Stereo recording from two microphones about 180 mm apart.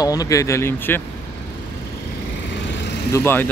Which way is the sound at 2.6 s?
80° left.